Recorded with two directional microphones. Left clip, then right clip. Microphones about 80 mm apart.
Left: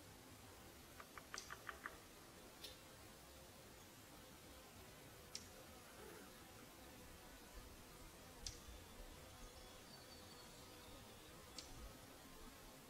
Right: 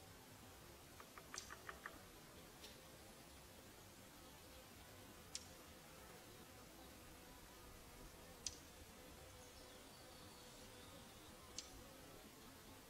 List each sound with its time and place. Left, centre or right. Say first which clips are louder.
1.3 s music: left 1 dB; left
8.5 s tick: right 3 dB; centre